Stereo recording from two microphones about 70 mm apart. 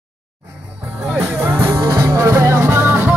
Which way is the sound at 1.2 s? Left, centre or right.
Right.